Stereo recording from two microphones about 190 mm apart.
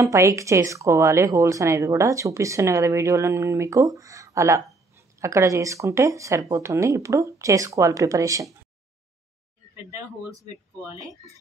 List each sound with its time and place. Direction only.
0.0 s speech: 15° right (ahead or behind)
9.8 s speech: 15° right (ahead or behind)